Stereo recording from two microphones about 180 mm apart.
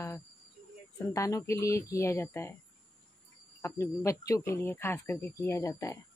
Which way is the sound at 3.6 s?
15° left (ahead or behind).